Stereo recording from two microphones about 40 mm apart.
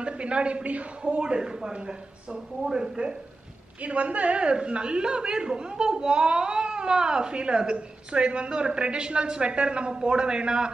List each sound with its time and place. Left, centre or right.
0.0 s a woman's voice: right
3.8 s a woman's voice: right